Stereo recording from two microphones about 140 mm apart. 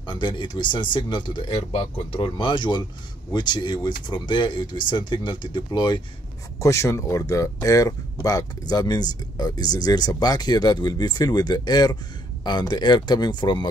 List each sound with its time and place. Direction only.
0.0 s speech: 35° left (ahead or behind)
6.6 s speech: 20° left (ahead or behind)